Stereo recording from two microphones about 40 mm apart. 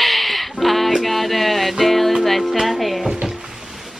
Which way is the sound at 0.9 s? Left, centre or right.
Centre.